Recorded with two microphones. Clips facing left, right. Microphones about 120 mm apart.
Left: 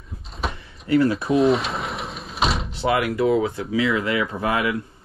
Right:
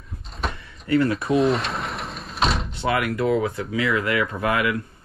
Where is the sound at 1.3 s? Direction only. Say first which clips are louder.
Left 1 dB; centre (ahead or behind).